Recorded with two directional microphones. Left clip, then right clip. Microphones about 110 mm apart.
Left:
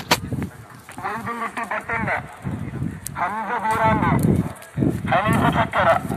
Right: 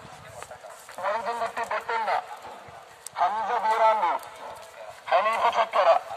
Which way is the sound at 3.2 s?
50° right (ahead or behind).